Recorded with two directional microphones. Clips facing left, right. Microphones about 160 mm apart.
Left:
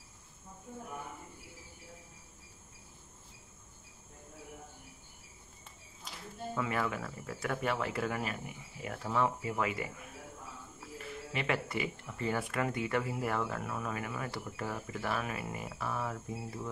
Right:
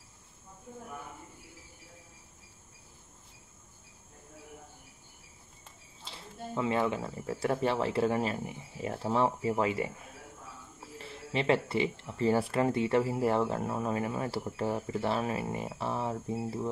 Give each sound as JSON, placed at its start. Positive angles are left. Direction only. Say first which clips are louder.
{"t": 6.0, "sound": "speech", "louder": "even", "side_deg": -25}
{"t": 11.0, "sound": "speech", "louder": "right 5 dB", "side_deg": -30}